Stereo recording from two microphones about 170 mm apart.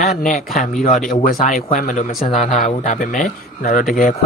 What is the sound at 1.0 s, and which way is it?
A man's voice, 50° left (ahead or behind).